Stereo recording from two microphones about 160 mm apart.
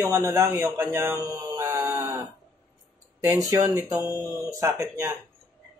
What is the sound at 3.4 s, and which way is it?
Speech, 20° right (ahead or behind).